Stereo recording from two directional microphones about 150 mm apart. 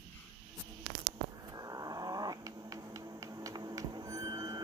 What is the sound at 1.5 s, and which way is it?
Cat, 25° right (ahead or behind).